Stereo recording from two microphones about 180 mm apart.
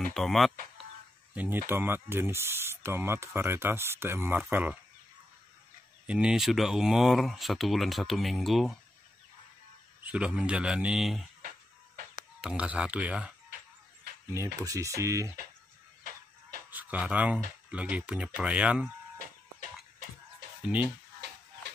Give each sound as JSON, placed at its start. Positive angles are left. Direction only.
{"t": 0.1, "sound": "speech", "side_deg": 0}
{"t": 6.0, "sound": "speech", "side_deg": -5}
{"t": 10.0, "sound": "speech", "side_deg": -5}
{"t": 12.4, "sound": "speech", "side_deg": -5}
{"t": 14.3, "sound": "speech", "side_deg": -15}
{"t": 16.0, "sound": "music", "side_deg": -55}
{"t": 16.7, "sound": "speech", "side_deg": -10}
{"t": 20.6, "sound": "speech", "side_deg": -5}